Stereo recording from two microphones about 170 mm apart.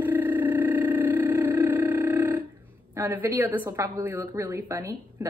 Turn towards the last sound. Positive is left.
turn(degrees=-20)  # may be behind; listen again after turning